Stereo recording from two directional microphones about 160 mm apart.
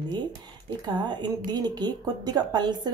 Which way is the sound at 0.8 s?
25° right (ahead or behind).